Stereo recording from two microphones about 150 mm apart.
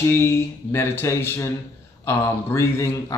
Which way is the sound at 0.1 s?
15° left (ahead or behind).